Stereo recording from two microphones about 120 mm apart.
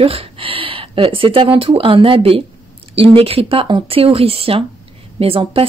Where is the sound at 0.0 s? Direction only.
50° right (ahead or behind).